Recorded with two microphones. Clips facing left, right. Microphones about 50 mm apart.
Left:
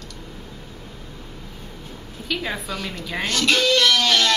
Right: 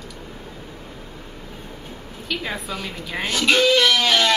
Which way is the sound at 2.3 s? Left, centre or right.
Centre.